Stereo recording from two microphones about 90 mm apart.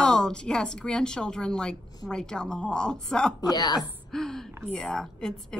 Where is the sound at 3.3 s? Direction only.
45° left (ahead or behind).